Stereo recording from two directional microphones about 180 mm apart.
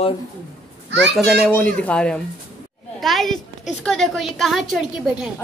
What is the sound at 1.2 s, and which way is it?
A woman's voice, 5° left (ahead or behind).